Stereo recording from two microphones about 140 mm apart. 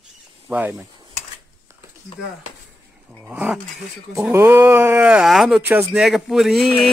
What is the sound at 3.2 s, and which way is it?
Speech, 5° right (ahead or behind).